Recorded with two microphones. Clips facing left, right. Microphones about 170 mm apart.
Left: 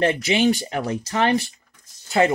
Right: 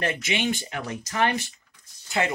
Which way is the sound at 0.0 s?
30° left (ahead or behind).